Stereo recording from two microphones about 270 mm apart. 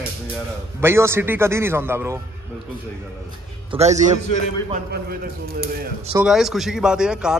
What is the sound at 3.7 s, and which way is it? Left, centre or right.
A man's voice, right.